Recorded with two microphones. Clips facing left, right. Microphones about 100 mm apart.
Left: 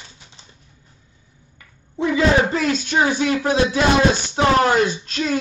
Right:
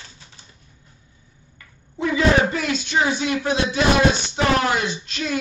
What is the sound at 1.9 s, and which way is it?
A woman's voice, 30° left (ahead or behind).